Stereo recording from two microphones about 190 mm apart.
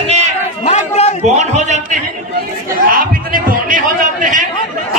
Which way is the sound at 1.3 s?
40° right (ahead or behind).